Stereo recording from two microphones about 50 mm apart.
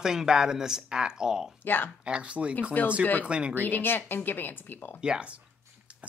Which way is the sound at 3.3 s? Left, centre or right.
Right.